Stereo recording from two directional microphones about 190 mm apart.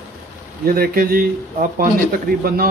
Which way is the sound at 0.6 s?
50° right (ahead or behind).